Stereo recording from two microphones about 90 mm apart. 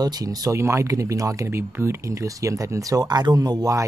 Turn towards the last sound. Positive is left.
turn(degrees=-50)  # may be behind; listen again after turning